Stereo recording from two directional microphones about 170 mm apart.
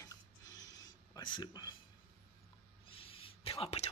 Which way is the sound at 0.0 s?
20° left (ahead or behind).